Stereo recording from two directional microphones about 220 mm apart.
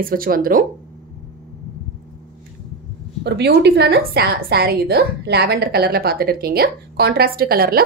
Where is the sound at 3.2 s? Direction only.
50° right (ahead or behind).